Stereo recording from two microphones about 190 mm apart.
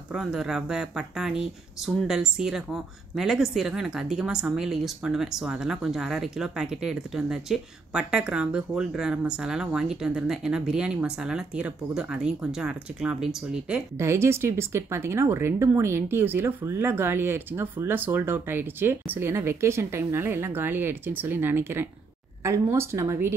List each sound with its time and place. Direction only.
0.1 s speech: 5° right (ahead or behind)
13.9 s speech: 15° right (ahead or behind)